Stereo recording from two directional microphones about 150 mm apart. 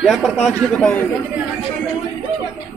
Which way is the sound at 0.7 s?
10° left (ahead or behind).